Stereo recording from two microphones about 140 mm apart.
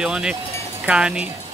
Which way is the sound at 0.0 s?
5° right (ahead or behind).